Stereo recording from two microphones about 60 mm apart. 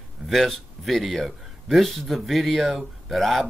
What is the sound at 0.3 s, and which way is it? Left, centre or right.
Speech, centre.